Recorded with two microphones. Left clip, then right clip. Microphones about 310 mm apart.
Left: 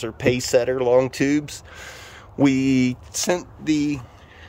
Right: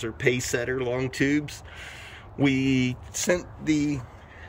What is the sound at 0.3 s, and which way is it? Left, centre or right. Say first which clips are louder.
Speech: left 8 dB; centre.